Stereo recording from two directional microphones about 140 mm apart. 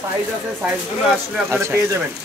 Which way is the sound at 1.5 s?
20° right (ahead or behind).